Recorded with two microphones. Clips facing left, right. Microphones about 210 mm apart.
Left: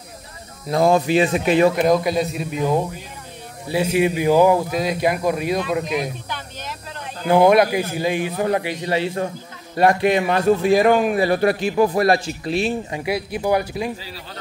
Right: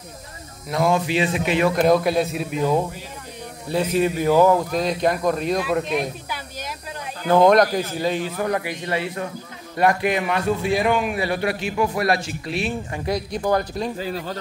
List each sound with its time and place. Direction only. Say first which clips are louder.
0.7 s a man's voice: left 4 dB; 35° left (ahead or behind)
1.8 s a man's voice: even; centre (ahead or behind)
3.6 s a man's voice: left 2 dB; 10° left (ahead or behind)
6.2 s a sound: even; 10° right (ahead or behind)
7.2 s a man's voice: left 1 dB; 10° left (ahead or behind); by 10.4 s 30° left (ahead or behind)
10.6 s a man's voice: left 5 dB; 45° left (ahead or behind)
12.9 s speech: left 1 dB; 10° left (ahead or behind)
13.9 s speech: right 9 dB; 50° right (ahead or behind)